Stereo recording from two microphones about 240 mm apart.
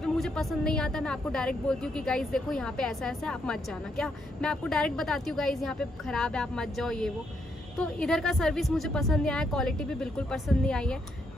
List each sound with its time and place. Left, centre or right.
0.0 s speech: centre